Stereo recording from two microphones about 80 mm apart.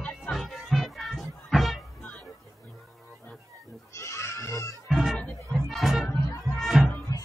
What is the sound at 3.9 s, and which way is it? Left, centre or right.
Goat, left.